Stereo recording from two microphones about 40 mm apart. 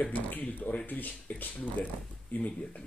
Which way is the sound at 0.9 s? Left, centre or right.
Left.